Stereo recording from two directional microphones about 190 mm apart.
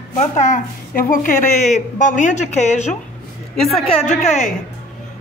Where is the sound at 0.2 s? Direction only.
40° left (ahead or behind).